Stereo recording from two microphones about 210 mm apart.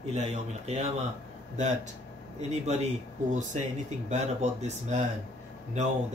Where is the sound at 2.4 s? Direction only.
35° right (ahead or behind).